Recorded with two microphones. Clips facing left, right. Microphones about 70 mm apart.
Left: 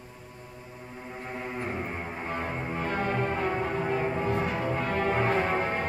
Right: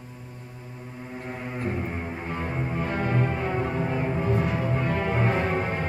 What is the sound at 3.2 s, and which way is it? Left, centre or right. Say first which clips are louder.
Music: right 1 dB; centre.